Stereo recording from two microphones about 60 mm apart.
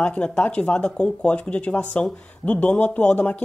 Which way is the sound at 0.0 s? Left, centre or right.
Centre.